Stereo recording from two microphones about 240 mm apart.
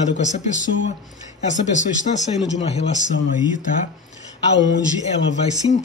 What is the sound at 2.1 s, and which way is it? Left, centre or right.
Speech, left.